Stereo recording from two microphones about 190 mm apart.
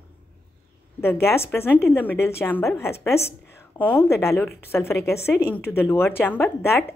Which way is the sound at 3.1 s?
35° left (ahead or behind).